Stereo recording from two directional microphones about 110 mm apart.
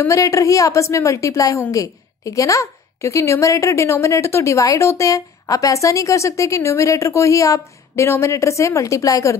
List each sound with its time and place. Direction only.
0.0 s a woman's voice: 30° left (ahead or behind)